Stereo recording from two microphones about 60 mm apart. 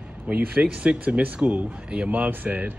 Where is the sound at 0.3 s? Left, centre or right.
Centre.